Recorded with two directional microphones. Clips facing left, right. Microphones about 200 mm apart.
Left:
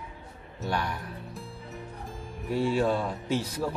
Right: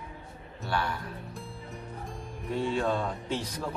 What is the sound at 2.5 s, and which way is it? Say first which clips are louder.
Speech: left 3 dB; 5° left (ahead or behind).